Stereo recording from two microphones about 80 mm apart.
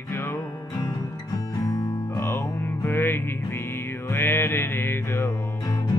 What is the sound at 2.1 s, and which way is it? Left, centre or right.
Music, left.